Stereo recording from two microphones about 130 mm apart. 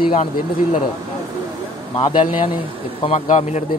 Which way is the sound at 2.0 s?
40° left (ahead or behind).